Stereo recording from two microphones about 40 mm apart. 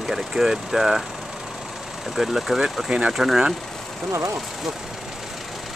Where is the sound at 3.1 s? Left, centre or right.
Centre.